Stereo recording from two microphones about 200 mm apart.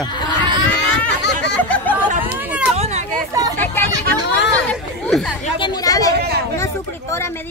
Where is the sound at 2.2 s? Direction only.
10° right (ahead or behind).